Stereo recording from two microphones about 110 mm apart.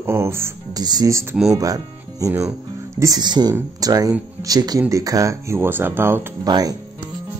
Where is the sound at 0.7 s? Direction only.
35° right (ahead or behind).